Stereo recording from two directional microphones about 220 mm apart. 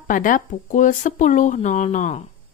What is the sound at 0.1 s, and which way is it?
A woman's voice, 35° left (ahead or behind).